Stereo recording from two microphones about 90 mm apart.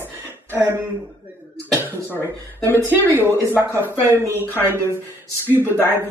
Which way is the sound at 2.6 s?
25° left (ahead or behind).